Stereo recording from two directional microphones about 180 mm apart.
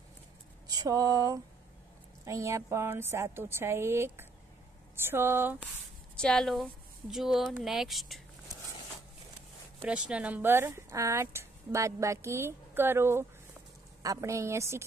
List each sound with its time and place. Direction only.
0.7 s speech: 20° right (ahead or behind)
6.1 s speech: 5° left (ahead or behind)
9.8 s speech: 5° right (ahead or behind)